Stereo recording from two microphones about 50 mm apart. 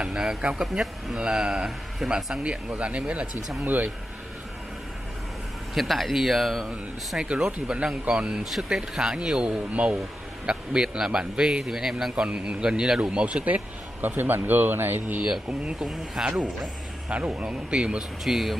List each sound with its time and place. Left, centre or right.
0.0 s a sound: centre
0.4 s a man's voice: centre
2.4 s speech: right
3.6 s speech: right
5.8 s speech: centre
7.2 s a man's voice: centre
8.5 s a man's voice: centre; by 13.6 s right
14.0 s speech: right
15.6 s a man's voice: centre
17.1 s speech: right
18.2 s speech: centre